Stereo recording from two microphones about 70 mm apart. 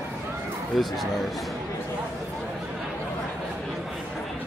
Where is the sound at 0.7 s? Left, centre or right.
Centre.